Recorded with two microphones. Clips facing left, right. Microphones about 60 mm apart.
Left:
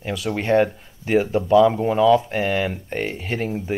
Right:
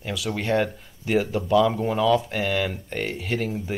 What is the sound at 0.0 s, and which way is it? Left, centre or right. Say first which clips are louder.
Speech: left 3 dB; left.